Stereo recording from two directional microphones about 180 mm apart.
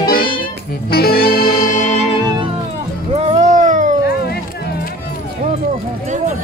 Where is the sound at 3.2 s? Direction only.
40° right (ahead or behind).